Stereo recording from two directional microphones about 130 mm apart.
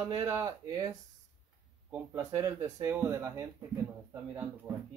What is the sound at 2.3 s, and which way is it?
Speech, 25° right (ahead or behind).